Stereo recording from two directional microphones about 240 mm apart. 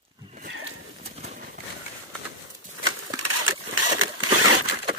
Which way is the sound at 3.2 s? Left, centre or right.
Right.